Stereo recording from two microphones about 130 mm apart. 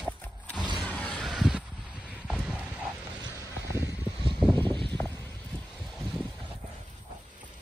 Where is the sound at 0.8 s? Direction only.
10° left (ahead or behind).